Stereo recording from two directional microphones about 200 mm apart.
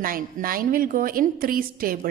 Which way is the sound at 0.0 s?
45° right (ahead or behind).